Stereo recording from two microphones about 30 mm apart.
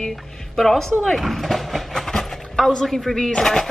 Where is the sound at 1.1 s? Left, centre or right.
Centre.